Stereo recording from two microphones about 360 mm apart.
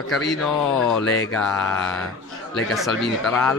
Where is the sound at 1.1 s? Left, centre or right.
Left.